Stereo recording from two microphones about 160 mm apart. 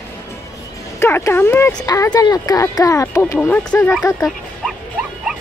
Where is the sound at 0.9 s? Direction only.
15° left (ahead or behind).